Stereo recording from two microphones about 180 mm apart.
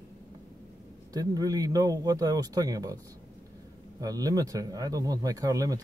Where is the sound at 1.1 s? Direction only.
20° right (ahead or behind).